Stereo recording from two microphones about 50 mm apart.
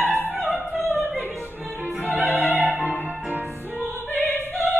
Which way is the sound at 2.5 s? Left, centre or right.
Right.